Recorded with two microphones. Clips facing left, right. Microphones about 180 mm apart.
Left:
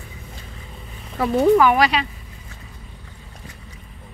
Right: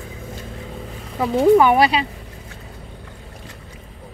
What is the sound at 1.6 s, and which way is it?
Speech, 30° right (ahead or behind).